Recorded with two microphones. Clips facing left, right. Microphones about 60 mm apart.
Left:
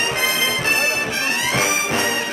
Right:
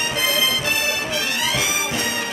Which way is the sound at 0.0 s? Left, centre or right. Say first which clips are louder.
Left 1 dB; left.